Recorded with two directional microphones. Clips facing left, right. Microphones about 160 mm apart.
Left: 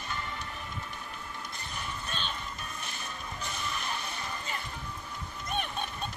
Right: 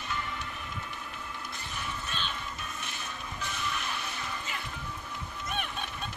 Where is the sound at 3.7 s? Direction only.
35° left (ahead or behind).